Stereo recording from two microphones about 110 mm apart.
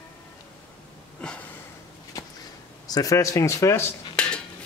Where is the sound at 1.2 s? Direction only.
10° left (ahead or behind).